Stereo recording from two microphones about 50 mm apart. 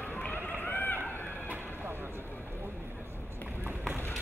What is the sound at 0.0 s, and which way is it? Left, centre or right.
Run, left.